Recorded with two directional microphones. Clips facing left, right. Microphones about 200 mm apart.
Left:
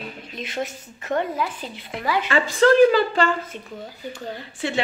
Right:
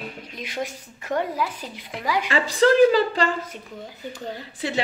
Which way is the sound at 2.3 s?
35° right (ahead or behind).